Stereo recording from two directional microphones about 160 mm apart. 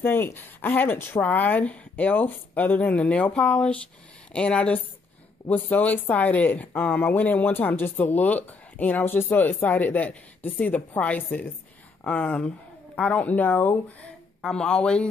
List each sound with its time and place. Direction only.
0.0 s speech: 15° left (ahead or behind)